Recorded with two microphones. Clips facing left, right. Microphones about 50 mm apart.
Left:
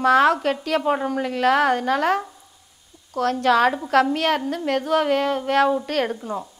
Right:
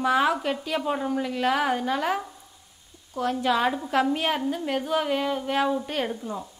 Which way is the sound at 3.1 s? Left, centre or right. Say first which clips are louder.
Left 5 dB; left.